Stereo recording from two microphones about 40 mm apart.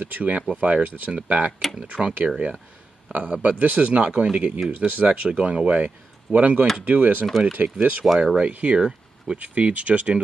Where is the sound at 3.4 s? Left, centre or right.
Right.